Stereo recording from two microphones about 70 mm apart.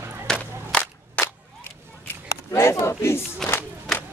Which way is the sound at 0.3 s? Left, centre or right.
Centre.